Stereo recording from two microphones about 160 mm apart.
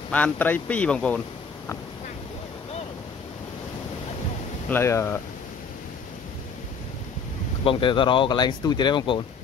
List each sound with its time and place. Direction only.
0.1 s speech: 10° left (ahead or behind)
4.6 s speech: 15° left (ahead or behind)
7.6 s speech: 30° left (ahead or behind)